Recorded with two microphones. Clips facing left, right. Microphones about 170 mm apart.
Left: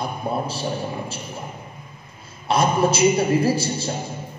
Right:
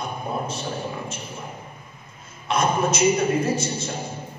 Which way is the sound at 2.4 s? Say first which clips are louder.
Left 3 dB; 35° left (ahead or behind).